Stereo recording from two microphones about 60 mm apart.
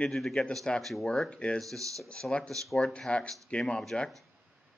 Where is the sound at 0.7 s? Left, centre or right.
Centre.